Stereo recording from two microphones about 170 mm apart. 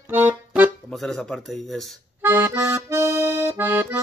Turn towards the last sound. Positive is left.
turn(degrees=-10)  # may be behind; listen again after turning